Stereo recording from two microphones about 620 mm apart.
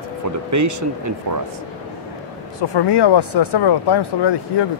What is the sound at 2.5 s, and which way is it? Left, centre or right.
Speech, left.